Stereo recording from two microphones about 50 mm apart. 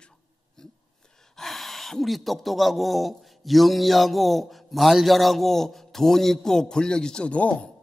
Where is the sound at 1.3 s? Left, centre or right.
Centre; by 7.7 s left.